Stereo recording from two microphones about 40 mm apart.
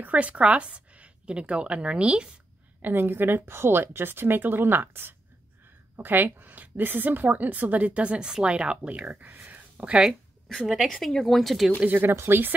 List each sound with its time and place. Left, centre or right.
0.0 s a woman's voice: right
2.8 s a woman's voice: right
8.2 s speech: centre
9.2 s whispering: right
10.7 s speech: centre
11.0 s speech: centre
12.0 s a woman's voice: right